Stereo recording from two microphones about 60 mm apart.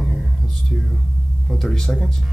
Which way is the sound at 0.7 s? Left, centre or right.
Left.